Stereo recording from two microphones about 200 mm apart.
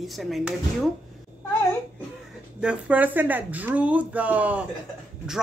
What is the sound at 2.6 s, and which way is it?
Speech, 5° right (ahead or behind).